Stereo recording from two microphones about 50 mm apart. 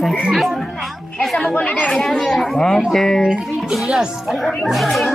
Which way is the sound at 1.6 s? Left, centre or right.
Left.